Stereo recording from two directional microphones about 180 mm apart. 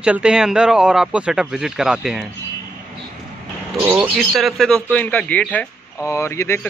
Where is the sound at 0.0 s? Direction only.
5° right (ahead or behind).